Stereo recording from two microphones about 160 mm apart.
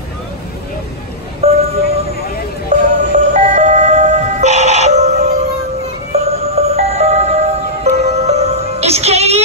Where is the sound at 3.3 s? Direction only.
45° right (ahead or behind).